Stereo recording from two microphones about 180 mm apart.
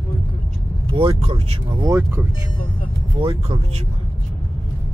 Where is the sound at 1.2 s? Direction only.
30° right (ahead or behind).